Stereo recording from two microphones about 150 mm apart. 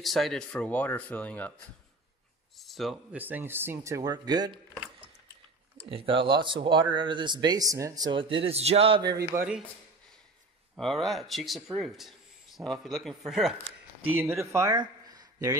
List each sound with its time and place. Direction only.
0.0 s speech: centre (ahead or behind)
2.6 s speech: centre (ahead or behind)
3.2 s a man's voice: 10° right (ahead or behind); by 4.6 s 30° right (ahead or behind)
5.9 s speech: 35° right (ahead or behind)
9.1 s speech: 15° right (ahead or behind)
10.8 s speech: centre (ahead or behind)
14.1 s speech: 15° right (ahead or behind)